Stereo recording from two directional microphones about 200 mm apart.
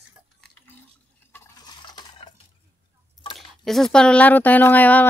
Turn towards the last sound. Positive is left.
turn(degrees=10)  # may be behind; listen again after turning